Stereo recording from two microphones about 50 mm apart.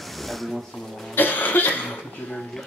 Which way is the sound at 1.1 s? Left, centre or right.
Left.